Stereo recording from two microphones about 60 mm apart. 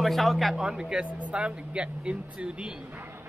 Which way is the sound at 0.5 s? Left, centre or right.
Centre.